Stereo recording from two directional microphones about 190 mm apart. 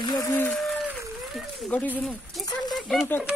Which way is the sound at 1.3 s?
5° left (ahead or behind).